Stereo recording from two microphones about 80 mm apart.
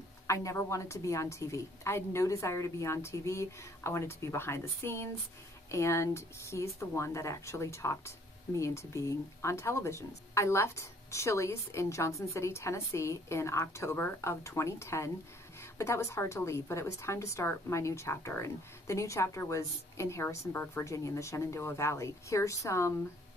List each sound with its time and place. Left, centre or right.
0.3 s a woman's voice: left